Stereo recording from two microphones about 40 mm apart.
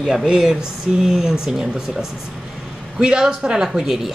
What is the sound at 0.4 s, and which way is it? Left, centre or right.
A woman's voice, centre.